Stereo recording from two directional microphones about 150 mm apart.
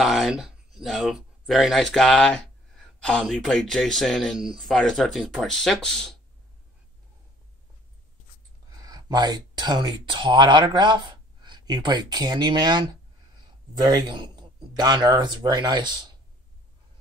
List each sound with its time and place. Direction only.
0.0 s speech: centre (ahead or behind)
8.7 s a man's voice: 25° right (ahead or behind)